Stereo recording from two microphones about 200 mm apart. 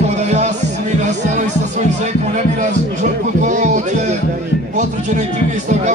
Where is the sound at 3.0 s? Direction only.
40° right (ahead or behind).